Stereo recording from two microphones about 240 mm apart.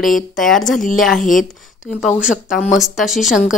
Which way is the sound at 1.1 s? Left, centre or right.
Left.